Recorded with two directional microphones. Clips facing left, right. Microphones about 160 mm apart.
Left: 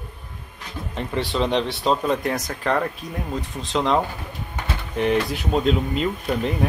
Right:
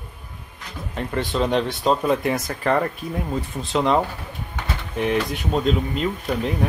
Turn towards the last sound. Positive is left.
turn(degrees=0)  # may be behind; listen again after turning